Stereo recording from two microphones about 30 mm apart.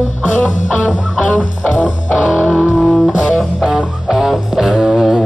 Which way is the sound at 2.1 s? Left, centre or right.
Left.